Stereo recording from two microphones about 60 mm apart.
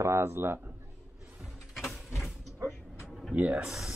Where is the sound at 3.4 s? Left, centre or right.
Right.